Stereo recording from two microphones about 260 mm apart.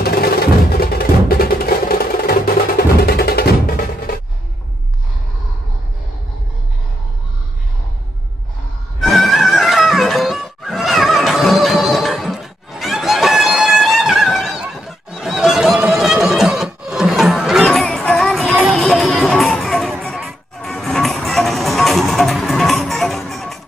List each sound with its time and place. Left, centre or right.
0.0 s music: left
9.0 s music: centre